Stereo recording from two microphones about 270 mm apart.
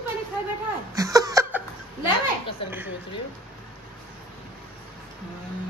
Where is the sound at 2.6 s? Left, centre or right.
Centre.